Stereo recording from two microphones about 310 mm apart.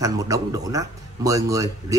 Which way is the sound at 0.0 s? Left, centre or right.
Centre.